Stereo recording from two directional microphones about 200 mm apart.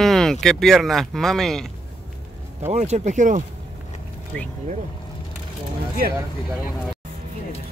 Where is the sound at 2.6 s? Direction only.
35° right (ahead or behind).